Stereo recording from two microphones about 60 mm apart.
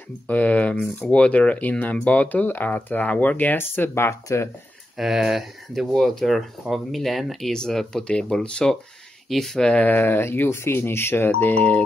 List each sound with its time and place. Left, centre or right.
0.3 s speech: left
4.3 s speech: left
4.9 s speech: centre
9.7 s speech: left
9.9 s speech: left
11.5 s speech: left